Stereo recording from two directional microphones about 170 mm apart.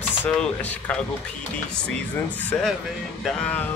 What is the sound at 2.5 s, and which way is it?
Speech, 10° left (ahead or behind).